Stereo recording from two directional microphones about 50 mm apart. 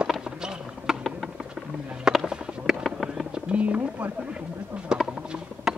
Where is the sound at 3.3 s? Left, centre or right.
Right.